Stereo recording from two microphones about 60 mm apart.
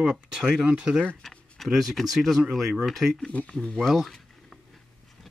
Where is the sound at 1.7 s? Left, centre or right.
Centre.